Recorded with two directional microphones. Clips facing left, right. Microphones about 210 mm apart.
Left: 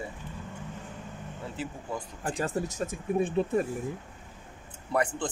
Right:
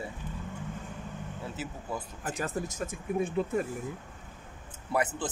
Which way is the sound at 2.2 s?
30° left (ahead or behind).